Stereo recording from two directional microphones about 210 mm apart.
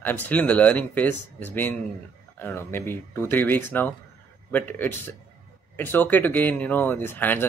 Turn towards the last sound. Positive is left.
turn(degrees=10)  # may be behind; listen again after turning